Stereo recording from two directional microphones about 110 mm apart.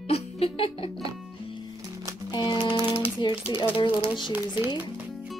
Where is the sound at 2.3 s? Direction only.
45° left (ahead or behind).